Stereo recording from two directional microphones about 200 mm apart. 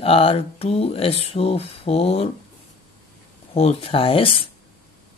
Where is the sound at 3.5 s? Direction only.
30° left (ahead or behind).